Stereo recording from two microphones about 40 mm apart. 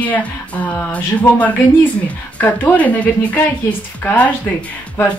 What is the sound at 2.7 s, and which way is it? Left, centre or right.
Speech, left.